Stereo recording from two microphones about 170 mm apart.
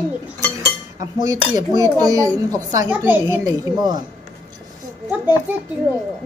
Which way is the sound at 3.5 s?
25° right (ahead or behind).